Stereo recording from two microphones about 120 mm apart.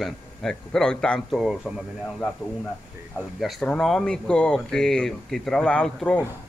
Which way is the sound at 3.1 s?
Centre (ahead or behind).